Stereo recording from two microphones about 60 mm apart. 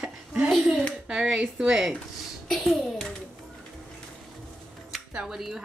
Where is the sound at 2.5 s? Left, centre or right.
Centre.